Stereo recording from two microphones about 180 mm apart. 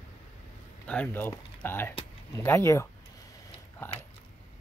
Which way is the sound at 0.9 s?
10° left (ahead or behind).